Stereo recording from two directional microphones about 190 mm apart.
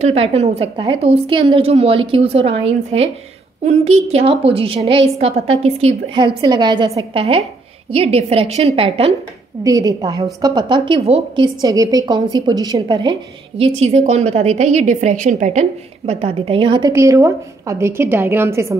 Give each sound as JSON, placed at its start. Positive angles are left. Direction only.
{"t": 0.0, "sound": "a woman's voice", "side_deg": -35}
{"t": 9.6, "sound": "a woman's voice", "side_deg": -20}